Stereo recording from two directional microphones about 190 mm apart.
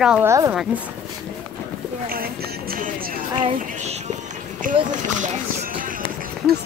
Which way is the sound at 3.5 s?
40° right (ahead or behind).